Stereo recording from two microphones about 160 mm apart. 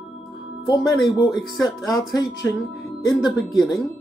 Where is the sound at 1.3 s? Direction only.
Centre (ahead or behind).